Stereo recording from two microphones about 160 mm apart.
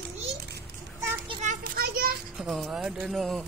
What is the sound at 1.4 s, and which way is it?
Children playing, 65° right (ahead or behind).